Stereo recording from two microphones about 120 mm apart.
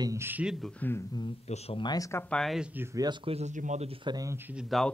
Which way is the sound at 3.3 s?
75° right (ahead or behind).